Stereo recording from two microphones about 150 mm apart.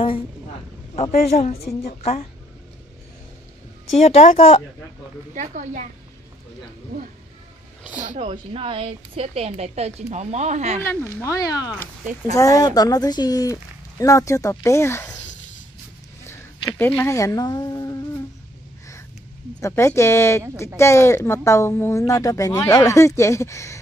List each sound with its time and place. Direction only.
0.9 s a woman's voice: 45° left (ahead or behind)
3.9 s a woman's voice: 45° left (ahead or behind)
5.3 s a woman's voice: 55° right (ahead or behind)
8.0 s a woman's voice: 50° right (ahead or behind)
10.8 s speech: 20° left (ahead or behind)
16.7 s speech: 15° left (ahead or behind)
19.6 s speech: 15° left (ahead or behind)